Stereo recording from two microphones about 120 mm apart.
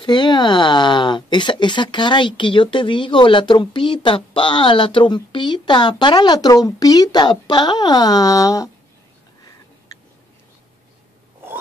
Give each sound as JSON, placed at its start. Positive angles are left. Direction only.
{"t": 0.0, "sound": "speech", "side_deg": 40}